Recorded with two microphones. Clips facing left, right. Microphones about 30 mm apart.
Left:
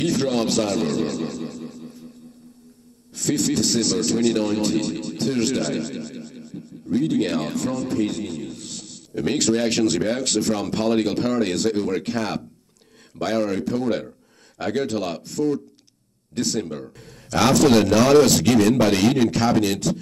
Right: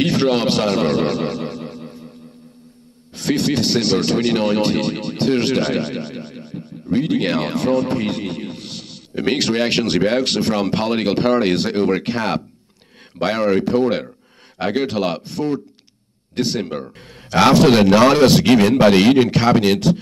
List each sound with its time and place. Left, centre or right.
0.0 s speech: right
3.1 s speech: right